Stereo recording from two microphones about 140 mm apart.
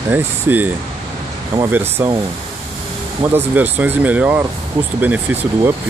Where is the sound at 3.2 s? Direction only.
15° right (ahead or behind).